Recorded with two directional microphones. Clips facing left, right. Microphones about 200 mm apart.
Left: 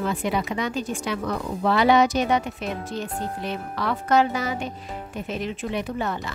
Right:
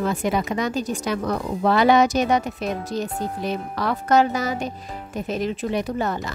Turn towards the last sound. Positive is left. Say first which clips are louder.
# right 3 dB
turn(degrees=-40)  # may be behind; listen again after turning